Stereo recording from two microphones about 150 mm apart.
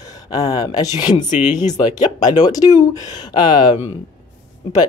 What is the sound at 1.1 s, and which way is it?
Speech, 50° left (ahead or behind).